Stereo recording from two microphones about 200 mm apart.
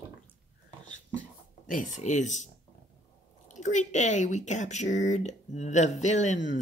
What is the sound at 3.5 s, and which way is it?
Speech, 35° left (ahead or behind).